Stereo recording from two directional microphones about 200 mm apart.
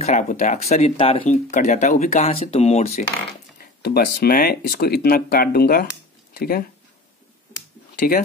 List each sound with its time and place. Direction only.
0.0 s speech: 35° left (ahead or behind)
1.2 s speech: 40° left (ahead or behind)
3.8 s speech: 50° left (ahead or behind)